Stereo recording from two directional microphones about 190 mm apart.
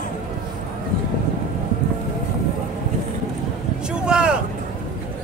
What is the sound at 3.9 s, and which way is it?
Vehicle, 5° right (ahead or behind).